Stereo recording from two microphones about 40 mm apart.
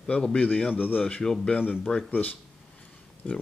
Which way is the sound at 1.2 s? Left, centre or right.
Centre.